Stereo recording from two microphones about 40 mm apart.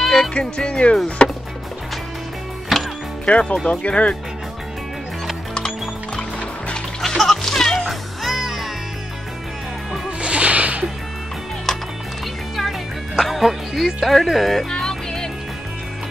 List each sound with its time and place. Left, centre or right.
0.0 s music: centre
0.3 s speech: left
1.0 s music: left
2.7 s music: centre
3.3 s speech: left
7.0 s music: centre
8.2 s music: centre
10.0 s whip: right
11.7 s music: centre
13.2 s music: centre
14.0 s speech: centre
14.7 s music: centre